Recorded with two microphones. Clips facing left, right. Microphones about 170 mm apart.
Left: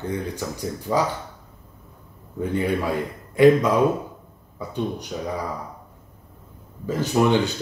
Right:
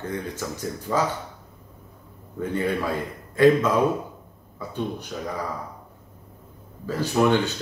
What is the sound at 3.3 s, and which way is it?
Speech, 15° left (ahead or behind).